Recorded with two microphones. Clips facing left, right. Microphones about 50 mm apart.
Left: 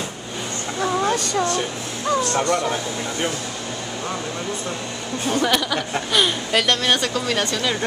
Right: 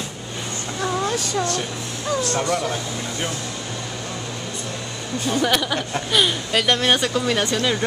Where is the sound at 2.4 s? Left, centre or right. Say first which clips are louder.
Left 2 dB; centre.